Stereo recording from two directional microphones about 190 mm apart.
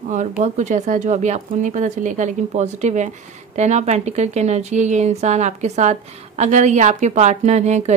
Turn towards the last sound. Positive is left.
turn(degrees=-35)  # may be behind; listen again after turning